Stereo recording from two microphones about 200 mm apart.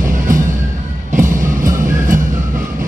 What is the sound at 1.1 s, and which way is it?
Music, 40° right (ahead or behind).